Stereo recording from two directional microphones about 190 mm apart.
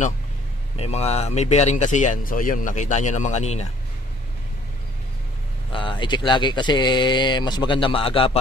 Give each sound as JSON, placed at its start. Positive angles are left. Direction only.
{"t": 0.7, "sound": "speech", "side_deg": 35}
{"t": 5.7, "sound": "speech", "side_deg": 25}